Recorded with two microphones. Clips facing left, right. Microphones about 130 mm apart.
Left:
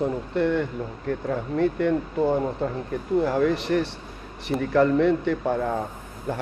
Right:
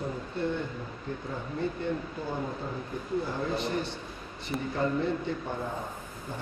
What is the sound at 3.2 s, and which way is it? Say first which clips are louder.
Speech: left 10 dB; 90° left.